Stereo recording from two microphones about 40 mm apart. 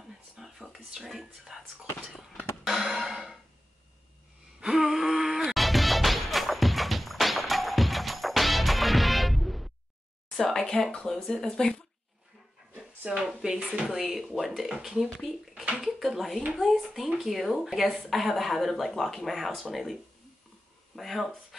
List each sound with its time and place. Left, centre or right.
0.4 s a sound: centre
0.9 s speech: centre
1.4 s speech: centre
2.6 s music: centre
4.6 s a sound: centre
5.5 s music: centre
10.5 s a sound: centre
11.1 s speech: centre
13.1 s speech: centre